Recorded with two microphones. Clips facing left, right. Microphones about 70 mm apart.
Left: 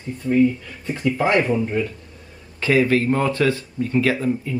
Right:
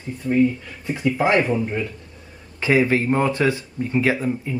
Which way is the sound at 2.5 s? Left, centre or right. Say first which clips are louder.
Left 1 dB; centre.